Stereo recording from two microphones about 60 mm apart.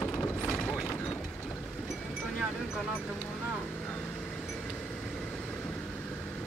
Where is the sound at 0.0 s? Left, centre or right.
Left.